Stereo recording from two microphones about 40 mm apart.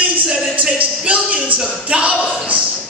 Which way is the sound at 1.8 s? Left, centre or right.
Right.